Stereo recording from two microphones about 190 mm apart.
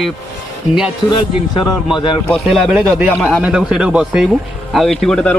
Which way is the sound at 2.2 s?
Centre (ahead or behind).